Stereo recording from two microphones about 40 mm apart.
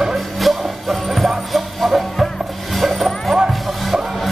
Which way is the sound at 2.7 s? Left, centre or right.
Centre.